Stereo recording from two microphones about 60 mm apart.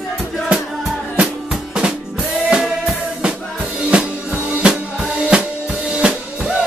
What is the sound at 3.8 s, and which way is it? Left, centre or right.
Drum, centre.